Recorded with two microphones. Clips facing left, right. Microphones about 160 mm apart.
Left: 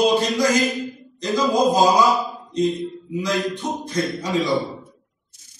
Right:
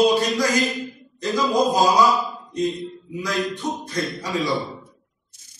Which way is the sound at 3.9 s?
Centre (ahead or behind).